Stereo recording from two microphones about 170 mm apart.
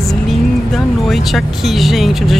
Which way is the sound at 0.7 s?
Centre (ahead or behind).